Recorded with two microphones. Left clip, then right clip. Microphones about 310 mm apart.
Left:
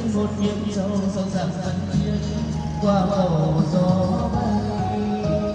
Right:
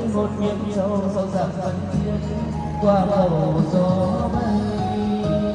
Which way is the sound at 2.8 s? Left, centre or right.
Right.